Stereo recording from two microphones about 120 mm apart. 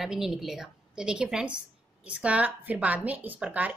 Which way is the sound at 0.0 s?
5° right (ahead or behind).